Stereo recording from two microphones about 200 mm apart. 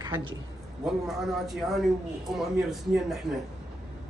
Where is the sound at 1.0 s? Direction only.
Centre (ahead or behind).